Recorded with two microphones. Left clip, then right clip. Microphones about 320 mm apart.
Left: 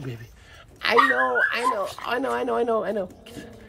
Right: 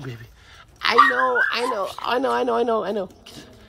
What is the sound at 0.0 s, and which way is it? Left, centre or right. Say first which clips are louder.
Speech: right 1 dB; centre.